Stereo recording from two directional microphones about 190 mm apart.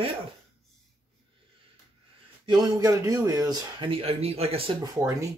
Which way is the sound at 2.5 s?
20° right (ahead or behind).